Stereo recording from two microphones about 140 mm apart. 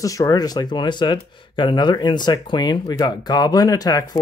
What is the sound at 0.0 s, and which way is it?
Speech, 25° left (ahead or behind).